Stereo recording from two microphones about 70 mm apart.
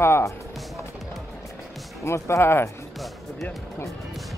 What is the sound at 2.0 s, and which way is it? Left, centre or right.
Speech, left.